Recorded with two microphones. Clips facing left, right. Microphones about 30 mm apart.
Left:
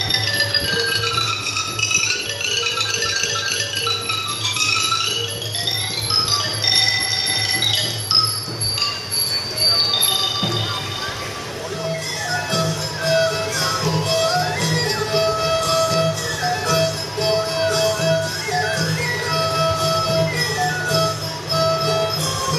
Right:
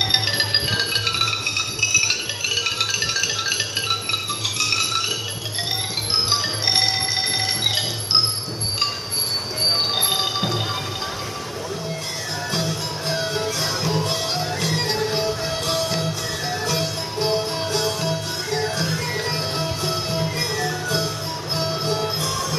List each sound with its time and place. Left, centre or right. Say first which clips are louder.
0.1 s music: left 1 dB; centre
9.6 s music: left 3 dB; left
9.9 s music: left 2 dB; centre
13.0 s music: left 9 dB; left
13.7 s music: left 2 dB; centre
15.1 s music: left 6 dB; left
16.7 s music: left 5 dB; left
20.0 s music: left 5 dB; left